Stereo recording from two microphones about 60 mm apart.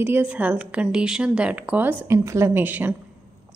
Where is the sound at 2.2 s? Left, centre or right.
Right.